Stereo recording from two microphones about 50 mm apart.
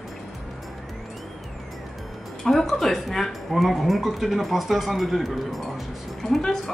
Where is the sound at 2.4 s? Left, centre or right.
Centre.